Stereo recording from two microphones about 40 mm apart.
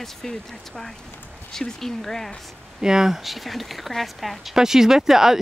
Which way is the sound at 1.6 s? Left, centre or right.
Centre.